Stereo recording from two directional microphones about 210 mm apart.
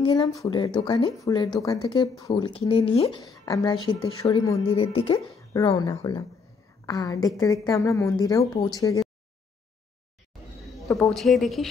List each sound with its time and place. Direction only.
0.0 s a woman's voice: 20° left (ahead or behind)
11.0 s speech: centre (ahead or behind)